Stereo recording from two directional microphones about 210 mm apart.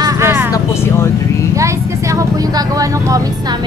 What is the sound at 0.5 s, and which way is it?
Vehicle, 10° left (ahead or behind).